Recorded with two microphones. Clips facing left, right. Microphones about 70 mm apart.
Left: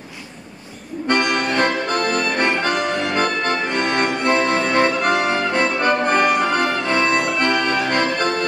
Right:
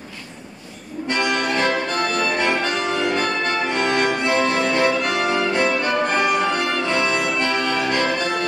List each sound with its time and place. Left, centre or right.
1.0 s music: left